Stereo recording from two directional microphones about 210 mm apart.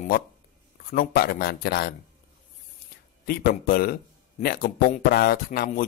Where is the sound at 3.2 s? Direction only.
45° left (ahead or behind).